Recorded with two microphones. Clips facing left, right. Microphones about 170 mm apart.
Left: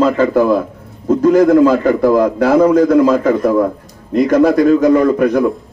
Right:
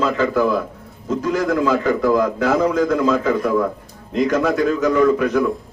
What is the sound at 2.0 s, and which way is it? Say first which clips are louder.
Speech: left 6 dB; 40° left (ahead or behind).